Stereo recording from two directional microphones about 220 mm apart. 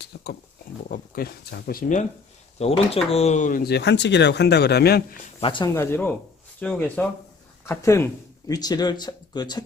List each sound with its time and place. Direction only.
0.0 s speech: 45° left (ahead or behind)
5.4 s speech: 20° left (ahead or behind)